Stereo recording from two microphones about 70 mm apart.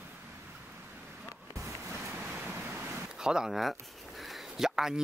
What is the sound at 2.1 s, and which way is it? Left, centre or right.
Vehicle, right.